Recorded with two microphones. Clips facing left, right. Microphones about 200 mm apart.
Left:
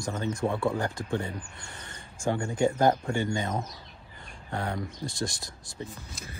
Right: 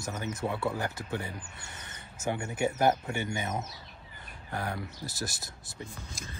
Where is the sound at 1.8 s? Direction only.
20° right (ahead or behind).